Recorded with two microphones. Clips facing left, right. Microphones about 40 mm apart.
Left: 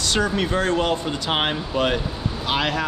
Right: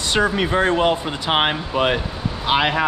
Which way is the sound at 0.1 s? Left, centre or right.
Centre.